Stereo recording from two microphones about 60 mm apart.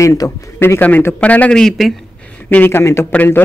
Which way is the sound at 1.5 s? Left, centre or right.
Centre.